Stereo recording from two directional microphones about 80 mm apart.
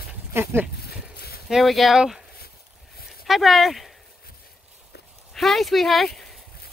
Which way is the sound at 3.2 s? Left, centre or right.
Centre.